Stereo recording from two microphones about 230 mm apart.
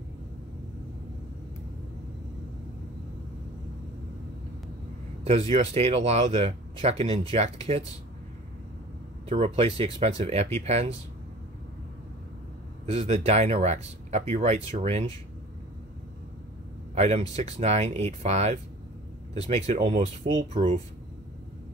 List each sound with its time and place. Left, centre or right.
5.5 s speech: right
9.3 s speech: right
12.8 s speech: right
16.9 s speech: right